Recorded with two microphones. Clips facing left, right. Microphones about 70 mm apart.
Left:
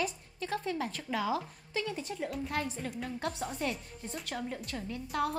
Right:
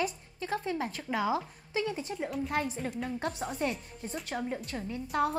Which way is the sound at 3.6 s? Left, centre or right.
Centre.